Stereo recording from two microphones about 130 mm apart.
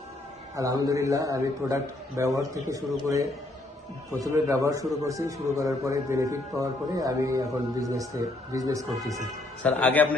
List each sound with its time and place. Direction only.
0.6 s a man's voice: 25° right (ahead or behind)
9.6 s a man's voice: 10° left (ahead or behind)